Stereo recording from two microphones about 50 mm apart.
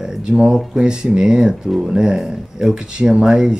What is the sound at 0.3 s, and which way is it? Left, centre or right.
Speech, centre.